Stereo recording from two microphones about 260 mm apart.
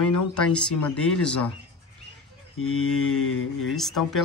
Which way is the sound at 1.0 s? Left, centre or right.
Centre.